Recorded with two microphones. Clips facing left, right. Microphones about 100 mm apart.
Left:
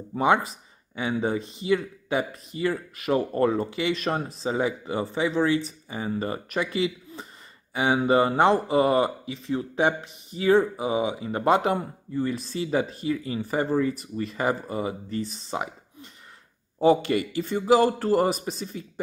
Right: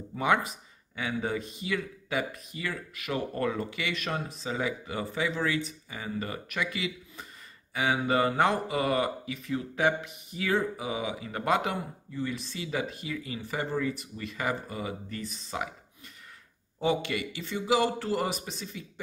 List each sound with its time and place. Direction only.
0.1 s speech: 30° left (ahead or behind)
16.8 s speech: 40° left (ahead or behind)